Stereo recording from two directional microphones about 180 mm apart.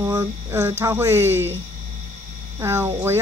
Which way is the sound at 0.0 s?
15° right (ahead or behind).